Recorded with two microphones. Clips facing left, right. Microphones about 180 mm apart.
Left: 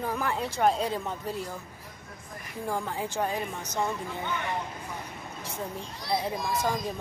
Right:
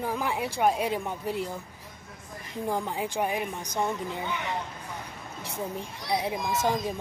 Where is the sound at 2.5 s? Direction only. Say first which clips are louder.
Right 2 dB; 20° right (ahead or behind).